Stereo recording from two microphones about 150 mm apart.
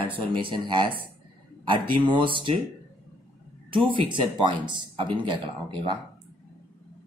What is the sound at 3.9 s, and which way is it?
Speech, 35° right (ahead or behind).